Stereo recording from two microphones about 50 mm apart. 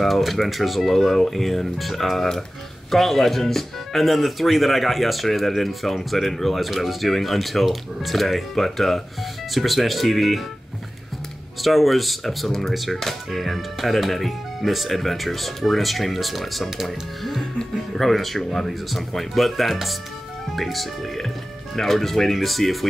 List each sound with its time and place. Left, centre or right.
0.0 s speech: centre
11.6 s speech: centre